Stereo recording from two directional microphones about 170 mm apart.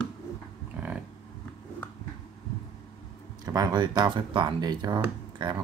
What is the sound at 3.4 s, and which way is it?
Speech, 20° right (ahead or behind).